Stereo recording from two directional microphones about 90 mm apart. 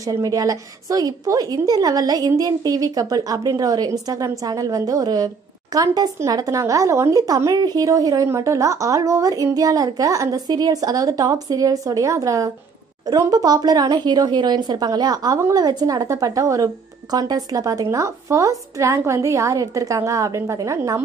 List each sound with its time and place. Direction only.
0.1 s a woman's voice: 40° right (ahead or behind)